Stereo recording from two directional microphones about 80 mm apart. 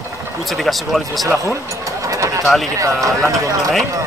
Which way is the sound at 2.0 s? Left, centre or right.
Right.